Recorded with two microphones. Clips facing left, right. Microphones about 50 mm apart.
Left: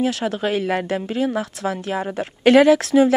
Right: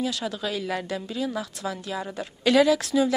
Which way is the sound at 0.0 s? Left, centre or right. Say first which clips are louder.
Left 7 dB; left.